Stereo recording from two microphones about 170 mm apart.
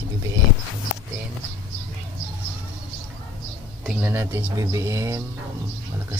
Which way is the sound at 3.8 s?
10° right (ahead or behind).